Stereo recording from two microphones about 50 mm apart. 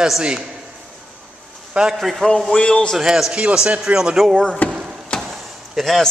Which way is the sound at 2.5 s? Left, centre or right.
Centre.